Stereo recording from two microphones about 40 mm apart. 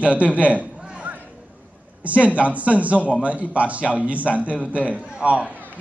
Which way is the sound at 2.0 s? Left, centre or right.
Right.